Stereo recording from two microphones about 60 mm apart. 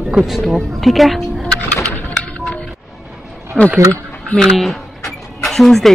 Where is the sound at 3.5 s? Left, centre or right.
Centre.